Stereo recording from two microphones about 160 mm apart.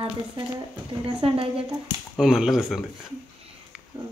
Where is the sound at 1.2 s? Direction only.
35° right (ahead or behind).